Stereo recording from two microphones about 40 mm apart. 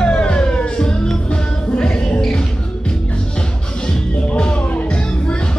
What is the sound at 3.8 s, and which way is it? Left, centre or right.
Music, left.